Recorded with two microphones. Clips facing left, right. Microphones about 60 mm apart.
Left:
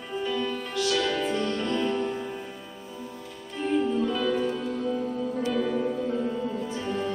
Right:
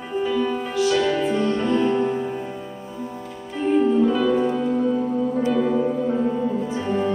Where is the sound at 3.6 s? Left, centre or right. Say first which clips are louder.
Right 7 dB; centre.